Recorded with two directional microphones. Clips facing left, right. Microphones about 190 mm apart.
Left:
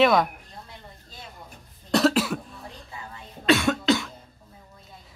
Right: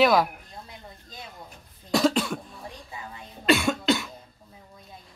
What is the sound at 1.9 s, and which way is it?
Cough, 5° left (ahead or behind).